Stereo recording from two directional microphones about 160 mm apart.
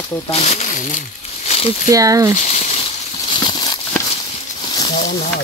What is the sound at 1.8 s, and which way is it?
Speech, 20° right (ahead or behind).